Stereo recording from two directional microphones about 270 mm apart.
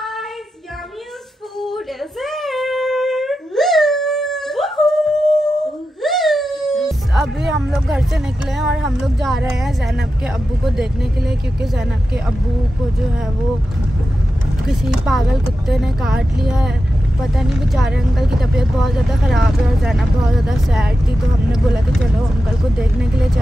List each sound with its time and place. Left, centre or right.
2.2 s dog: centre
14.9 s speech: centre
22.8 s speech: centre